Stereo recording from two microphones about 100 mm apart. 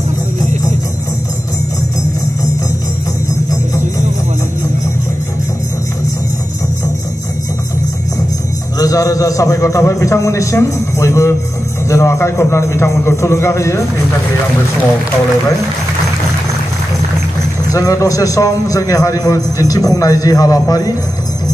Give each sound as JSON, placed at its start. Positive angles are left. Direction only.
{"t": 8.7, "sound": "a man's voice", "side_deg": 35}
{"t": 17.6, "sound": "a man's voice", "side_deg": 35}